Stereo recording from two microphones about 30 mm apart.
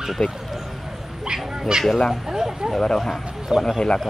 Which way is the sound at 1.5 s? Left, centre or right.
Right.